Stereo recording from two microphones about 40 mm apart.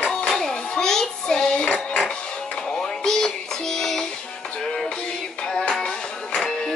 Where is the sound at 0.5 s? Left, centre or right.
Centre.